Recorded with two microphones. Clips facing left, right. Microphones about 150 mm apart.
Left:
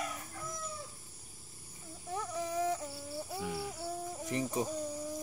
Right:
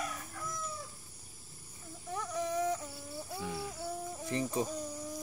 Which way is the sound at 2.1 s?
25° left (ahead or behind).